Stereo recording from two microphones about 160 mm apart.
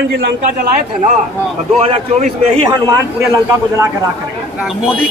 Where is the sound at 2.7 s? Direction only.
20° right (ahead or behind).